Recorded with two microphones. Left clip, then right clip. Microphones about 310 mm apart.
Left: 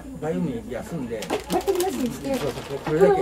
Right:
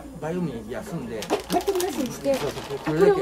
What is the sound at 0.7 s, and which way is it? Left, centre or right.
Speech, centre.